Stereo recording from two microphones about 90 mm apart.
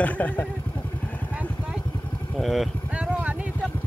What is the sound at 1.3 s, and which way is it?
Vehicle, 15° right (ahead or behind).